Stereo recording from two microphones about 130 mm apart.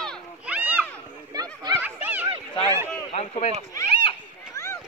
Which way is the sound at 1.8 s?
15° right (ahead or behind).